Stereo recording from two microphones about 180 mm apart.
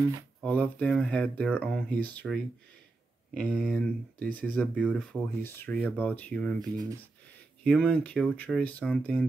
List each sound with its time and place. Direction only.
0.4 s speech: 5° left (ahead or behind)
6.6 s speech: 20° right (ahead or behind)
7.6 s speech: 5° left (ahead or behind)